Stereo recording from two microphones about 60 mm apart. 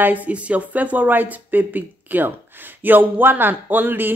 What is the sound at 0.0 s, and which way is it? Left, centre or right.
Speech, right.